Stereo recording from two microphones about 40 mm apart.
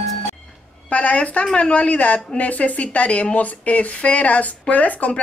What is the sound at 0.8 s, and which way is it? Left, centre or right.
A woman's voice, left.